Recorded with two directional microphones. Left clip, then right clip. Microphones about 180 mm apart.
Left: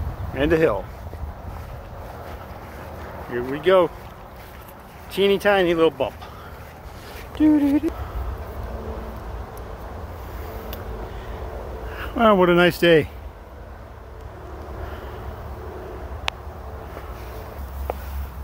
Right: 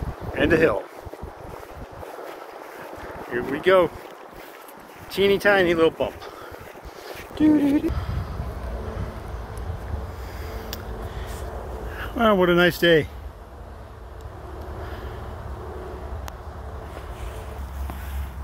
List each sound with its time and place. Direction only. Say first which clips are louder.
0.3 s speech: even; 5° left (ahead or behind)
3.3 s speech: left 1 dB; 5° left (ahead or behind)
5.1 s speech: even; 5° left (ahead or behind)
7.3 s speech: left 1 dB; 5° left (ahead or behind)
11.9 s speech: left 3 dB; 10° left (ahead or behind)